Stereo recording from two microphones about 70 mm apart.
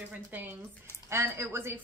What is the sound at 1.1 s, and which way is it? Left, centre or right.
Speech, right.